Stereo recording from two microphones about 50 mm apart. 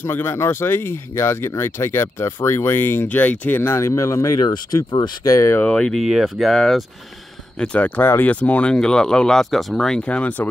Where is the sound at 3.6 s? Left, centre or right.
Left.